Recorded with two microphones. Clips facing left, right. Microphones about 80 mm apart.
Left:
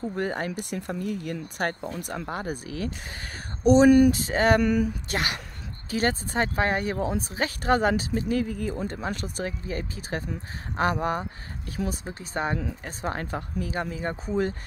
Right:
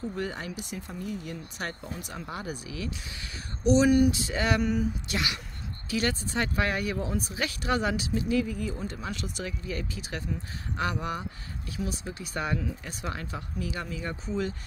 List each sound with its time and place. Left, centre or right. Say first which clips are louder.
0.1 s speech: left 5 dB; left